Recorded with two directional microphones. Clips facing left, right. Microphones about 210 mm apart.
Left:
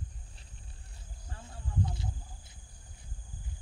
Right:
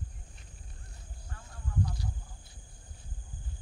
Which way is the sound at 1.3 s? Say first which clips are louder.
Right 1 dB; 25° left (ahead or behind).